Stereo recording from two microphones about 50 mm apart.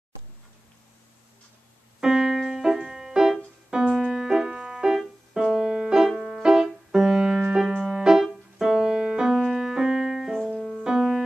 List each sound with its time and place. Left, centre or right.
2.0 s music: centre
10.5 s music: centre
10.8 s music: centre